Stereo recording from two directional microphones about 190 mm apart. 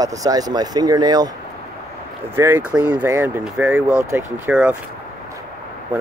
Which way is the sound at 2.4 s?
15° right (ahead or behind).